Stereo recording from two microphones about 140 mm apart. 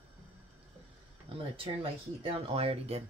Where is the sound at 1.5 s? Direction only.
40° right (ahead or behind).